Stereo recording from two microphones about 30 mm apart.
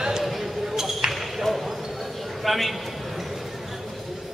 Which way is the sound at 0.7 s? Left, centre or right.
Centre.